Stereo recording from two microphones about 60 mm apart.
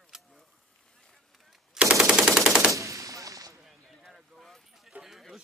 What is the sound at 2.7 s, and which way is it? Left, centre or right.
Gunshot, right.